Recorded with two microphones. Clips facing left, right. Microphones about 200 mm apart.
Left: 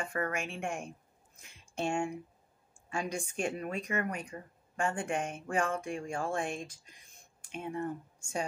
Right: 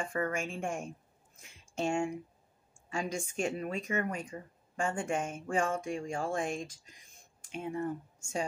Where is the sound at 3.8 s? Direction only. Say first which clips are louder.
Right 1 dB; 25° right (ahead or behind).